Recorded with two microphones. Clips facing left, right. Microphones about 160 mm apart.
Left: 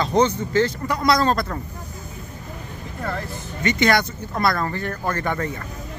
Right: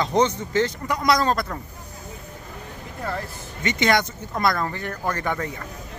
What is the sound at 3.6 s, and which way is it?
A man's voice, 20° right (ahead or behind).